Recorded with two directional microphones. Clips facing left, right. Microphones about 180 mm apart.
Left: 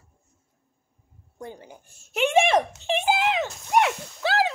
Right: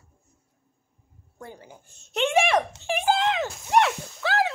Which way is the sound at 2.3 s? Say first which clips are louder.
Left 2 dB; 25° left (ahead or behind).